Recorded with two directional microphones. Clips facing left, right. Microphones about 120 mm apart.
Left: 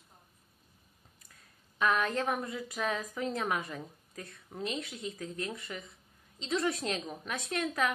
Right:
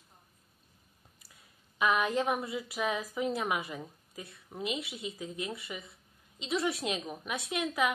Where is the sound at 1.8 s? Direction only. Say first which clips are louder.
Right 1 dB; 10° right (ahead or behind).